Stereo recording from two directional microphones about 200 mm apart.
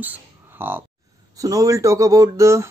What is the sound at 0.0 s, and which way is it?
Speech, 10° right (ahead or behind).